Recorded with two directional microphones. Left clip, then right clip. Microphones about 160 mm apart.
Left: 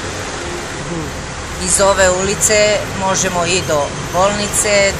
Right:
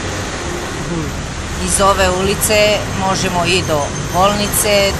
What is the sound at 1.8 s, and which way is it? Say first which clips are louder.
Speech: left 1 dB; 10° left (ahead or behind).